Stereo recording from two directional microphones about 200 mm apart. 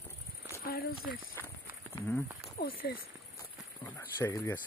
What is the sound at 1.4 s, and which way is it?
Walk, 15° left (ahead or behind).